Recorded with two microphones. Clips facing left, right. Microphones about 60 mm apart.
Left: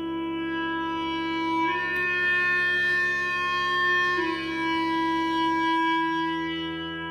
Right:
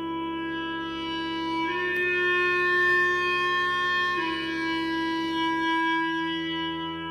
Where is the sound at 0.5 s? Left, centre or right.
Left.